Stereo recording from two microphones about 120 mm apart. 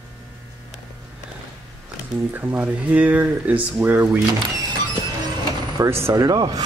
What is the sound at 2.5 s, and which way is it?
Speech, 10° right (ahead or behind).